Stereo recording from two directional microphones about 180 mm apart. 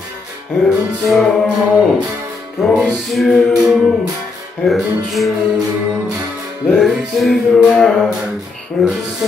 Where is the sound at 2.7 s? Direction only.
Centre (ahead or behind).